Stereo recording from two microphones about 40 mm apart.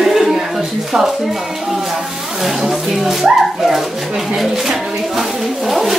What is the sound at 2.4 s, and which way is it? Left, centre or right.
Speech, centre.